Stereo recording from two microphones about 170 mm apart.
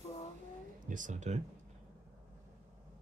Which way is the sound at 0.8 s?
50° right (ahead or behind).